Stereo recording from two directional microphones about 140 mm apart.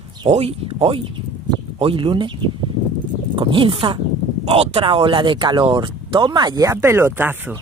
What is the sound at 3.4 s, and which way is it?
Speech, 40° right (ahead or behind).